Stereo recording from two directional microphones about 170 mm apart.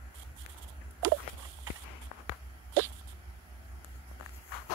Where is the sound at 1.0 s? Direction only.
15° right (ahead or behind).